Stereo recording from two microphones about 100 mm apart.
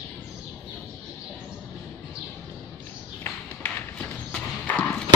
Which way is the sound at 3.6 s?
15° left (ahead or behind).